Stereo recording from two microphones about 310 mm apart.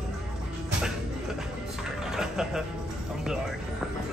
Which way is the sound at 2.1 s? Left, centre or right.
Centre.